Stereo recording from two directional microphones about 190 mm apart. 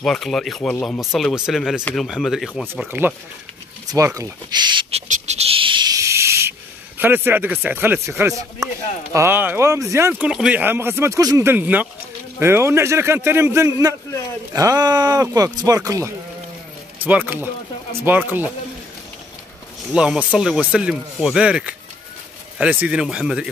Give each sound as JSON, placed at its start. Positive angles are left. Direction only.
{"t": 0.0, "sound": "speech", "side_deg": 0}
{"t": 5.0, "sound": "owl", "side_deg": -35}
{"t": 7.0, "sound": "speech", "side_deg": -10}
{"t": 19.9, "sound": "speech", "side_deg": -5}